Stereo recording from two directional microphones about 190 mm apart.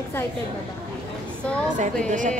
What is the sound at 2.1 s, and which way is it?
Speech, 40° right (ahead or behind).